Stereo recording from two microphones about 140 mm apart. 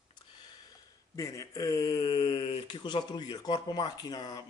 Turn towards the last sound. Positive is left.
turn(degrees=25)  # may be behind; listen again after turning